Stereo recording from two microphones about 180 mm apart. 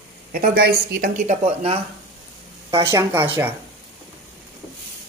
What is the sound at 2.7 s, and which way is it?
Speech, 20° right (ahead or behind).